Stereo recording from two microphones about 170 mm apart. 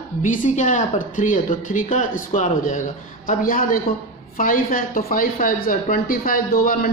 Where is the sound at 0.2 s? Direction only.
50° left (ahead or behind).